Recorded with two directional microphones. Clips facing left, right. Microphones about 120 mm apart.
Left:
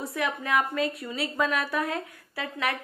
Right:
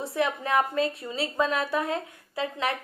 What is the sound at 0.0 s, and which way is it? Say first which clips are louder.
A woman's voice: right 3 dB; 30° right (ahead or behind).